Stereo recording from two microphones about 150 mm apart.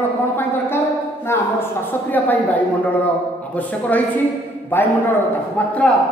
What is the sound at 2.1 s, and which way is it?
A woman's voice, 10° left (ahead or behind).